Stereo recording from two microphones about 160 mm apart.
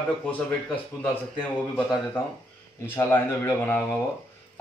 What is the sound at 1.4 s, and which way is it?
A man's voice, 5° left (ahead or behind).